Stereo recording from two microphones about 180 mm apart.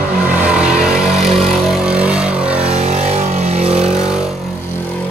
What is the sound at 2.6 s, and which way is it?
Vehicle, 35° right (ahead or behind).